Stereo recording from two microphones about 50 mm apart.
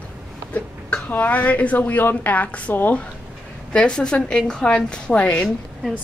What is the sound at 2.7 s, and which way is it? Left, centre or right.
Speech, left.